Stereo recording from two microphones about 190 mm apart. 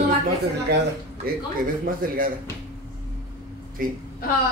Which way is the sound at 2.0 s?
50° right (ahead or behind).